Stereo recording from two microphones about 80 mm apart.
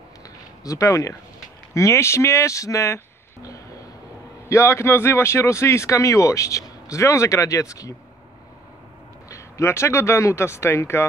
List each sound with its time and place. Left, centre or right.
0.7 s speech: left
4.5 s speech: left
9.3 s speech: left